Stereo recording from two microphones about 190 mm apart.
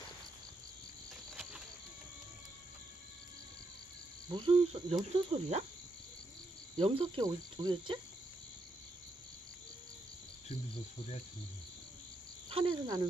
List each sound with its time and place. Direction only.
1.3 s a sound: centre (ahead or behind)
4.3 s cricket: 25° right (ahead or behind)
6.8 s cricket: 30° right (ahead or behind)
12.4 s speech: 25° right (ahead or behind)